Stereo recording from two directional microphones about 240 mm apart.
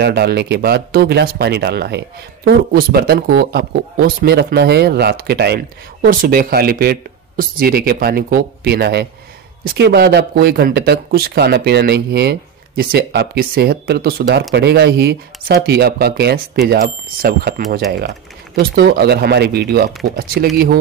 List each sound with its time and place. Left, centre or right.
0.0 s speech: right
18.6 s speech: right